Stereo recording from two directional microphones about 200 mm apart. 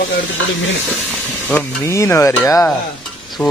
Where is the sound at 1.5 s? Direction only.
15° left (ahead or behind).